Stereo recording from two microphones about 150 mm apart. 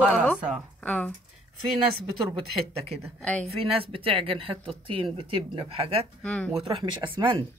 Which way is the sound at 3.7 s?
35° right (ahead or behind).